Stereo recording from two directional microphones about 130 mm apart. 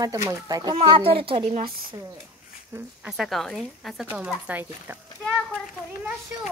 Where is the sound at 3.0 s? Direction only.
5° right (ahead or behind).